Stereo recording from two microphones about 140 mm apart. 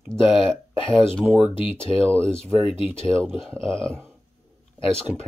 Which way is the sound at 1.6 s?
40° left (ahead or behind).